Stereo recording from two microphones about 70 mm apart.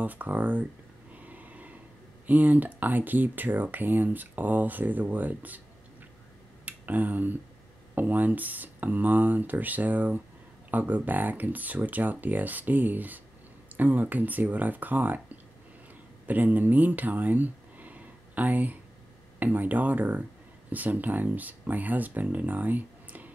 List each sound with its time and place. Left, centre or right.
0.0 s speech: right
1.1 s a sound: right
2.2 s speech: right
6.6 s speech: right